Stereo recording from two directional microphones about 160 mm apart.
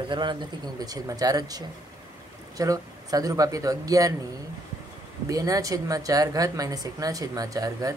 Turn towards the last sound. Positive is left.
turn(degrees=-20)  # may be behind; listen again after turning